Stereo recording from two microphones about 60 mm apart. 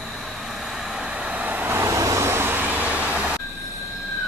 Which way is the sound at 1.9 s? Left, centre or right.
Right.